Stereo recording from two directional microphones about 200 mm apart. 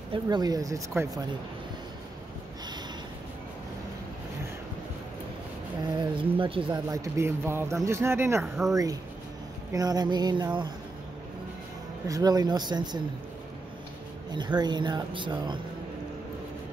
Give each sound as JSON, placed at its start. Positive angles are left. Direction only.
{"t": 0.1, "sound": "speech", "side_deg": -20}
{"t": 5.9, "sound": "speech", "side_deg": -25}
{"t": 9.7, "sound": "speech", "side_deg": -20}
{"t": 12.1, "sound": "speech", "side_deg": -20}
{"t": 14.3, "sound": "speech", "side_deg": -20}